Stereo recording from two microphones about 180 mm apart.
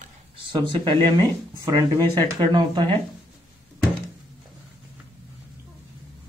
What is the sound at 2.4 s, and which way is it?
Speech, 25° right (ahead or behind).